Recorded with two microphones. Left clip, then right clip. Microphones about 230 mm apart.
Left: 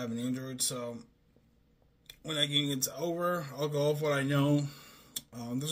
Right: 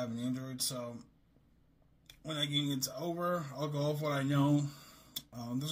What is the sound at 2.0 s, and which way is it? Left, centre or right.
A man's voice, centre.